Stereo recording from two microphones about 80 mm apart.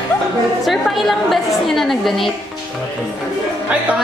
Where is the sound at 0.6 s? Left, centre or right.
Centre.